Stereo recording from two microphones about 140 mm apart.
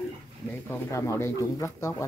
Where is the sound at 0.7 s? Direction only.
20° left (ahead or behind).